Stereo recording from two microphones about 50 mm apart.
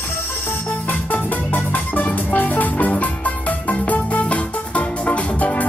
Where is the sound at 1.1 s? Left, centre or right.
Left.